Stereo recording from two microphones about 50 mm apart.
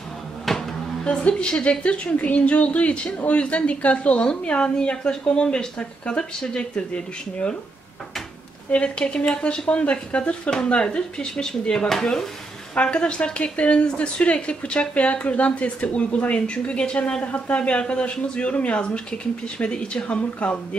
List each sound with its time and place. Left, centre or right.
0.5 s a sound: centre
1.0 s speech: left
8.7 s speech: left; by 12.3 s centre
12.7 s speech: left